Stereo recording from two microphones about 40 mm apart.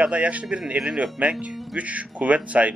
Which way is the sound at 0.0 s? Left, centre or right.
Right.